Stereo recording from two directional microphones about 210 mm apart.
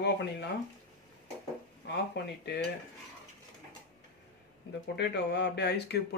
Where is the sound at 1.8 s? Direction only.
50° left (ahead or behind).